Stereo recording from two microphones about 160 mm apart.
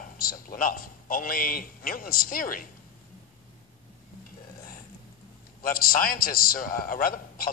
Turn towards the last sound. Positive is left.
turn(degrees=65)  # may be behind; listen again after turning